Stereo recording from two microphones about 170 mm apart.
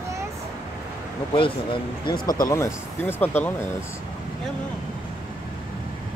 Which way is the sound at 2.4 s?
15° left (ahead or behind).